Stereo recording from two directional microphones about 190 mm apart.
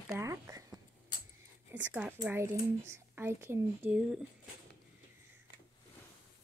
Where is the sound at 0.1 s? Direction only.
15° right (ahead or behind).